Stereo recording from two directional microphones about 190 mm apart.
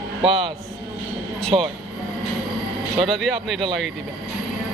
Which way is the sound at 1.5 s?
25° right (ahead or behind).